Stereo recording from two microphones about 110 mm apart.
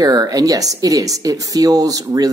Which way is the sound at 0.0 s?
35° right (ahead or behind).